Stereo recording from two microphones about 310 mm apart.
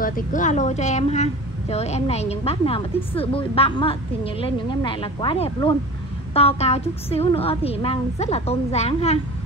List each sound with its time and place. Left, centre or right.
0.0 s a woman's voice: left